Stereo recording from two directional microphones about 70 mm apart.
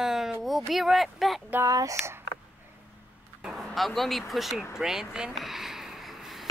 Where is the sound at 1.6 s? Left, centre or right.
Right.